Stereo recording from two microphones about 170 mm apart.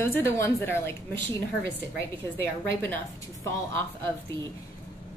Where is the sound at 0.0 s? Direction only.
15° left (ahead or behind).